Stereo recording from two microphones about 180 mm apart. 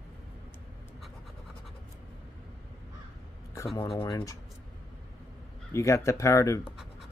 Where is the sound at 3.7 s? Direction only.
30° left (ahead or behind).